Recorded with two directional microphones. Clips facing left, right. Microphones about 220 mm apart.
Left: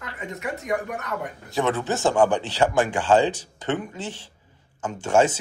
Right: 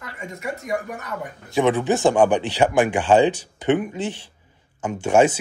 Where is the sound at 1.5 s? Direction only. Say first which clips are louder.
Right 5 dB; 15° right (ahead or behind).